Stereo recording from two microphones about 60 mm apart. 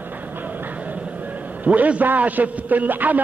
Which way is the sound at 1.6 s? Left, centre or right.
Right.